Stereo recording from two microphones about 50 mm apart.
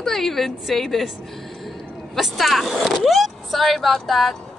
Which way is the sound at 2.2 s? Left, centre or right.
Centre.